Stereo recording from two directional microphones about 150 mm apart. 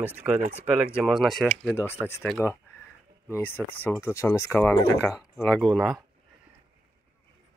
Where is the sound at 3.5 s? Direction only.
10° left (ahead or behind).